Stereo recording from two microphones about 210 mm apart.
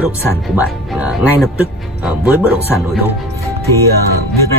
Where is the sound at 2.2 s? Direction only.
5° right (ahead or behind).